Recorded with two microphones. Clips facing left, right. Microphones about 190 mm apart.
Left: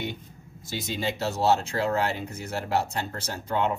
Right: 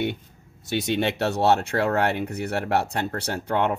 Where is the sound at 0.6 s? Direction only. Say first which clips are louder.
Right 8 dB; 70° right (ahead or behind).